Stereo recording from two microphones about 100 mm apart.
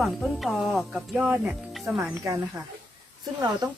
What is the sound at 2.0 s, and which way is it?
Speech, 30° right (ahead or behind).